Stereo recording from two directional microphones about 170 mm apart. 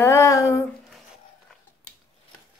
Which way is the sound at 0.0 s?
15° left (ahead or behind).